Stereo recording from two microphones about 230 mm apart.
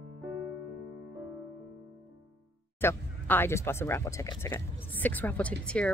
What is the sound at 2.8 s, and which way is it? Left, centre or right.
Speech, centre.